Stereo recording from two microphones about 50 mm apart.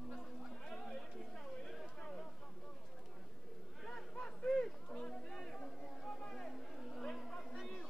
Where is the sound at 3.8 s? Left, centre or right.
Centre.